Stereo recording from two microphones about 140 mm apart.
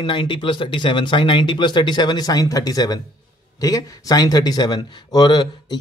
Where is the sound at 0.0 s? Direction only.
35° left (ahead or behind).